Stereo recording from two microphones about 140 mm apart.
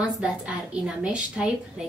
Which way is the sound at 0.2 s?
5° right (ahead or behind).